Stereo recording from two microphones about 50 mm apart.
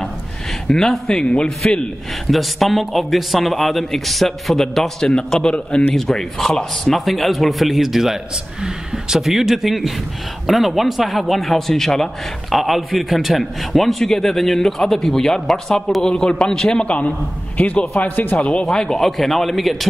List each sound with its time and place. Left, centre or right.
0.7 s a man's voice: centre
1.2 s a man's voice: left
2.3 s a man's voice: centre
5.0 s a man's voice: centre; by 18.4 s left
18.4 s a man's voice: left; by 19.9 s centre